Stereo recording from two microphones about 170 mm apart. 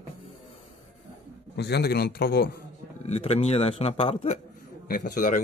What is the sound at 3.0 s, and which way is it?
A man's voice, 40° left (ahead or behind).